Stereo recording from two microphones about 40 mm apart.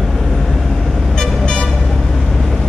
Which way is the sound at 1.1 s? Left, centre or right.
Centre.